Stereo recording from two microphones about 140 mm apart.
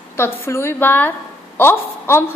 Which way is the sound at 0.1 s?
20° left (ahead or behind).